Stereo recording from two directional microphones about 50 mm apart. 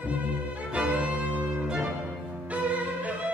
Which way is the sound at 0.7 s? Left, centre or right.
Right.